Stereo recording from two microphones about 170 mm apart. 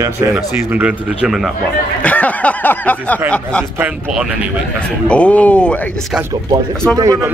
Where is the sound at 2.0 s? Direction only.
10° left (ahead or behind).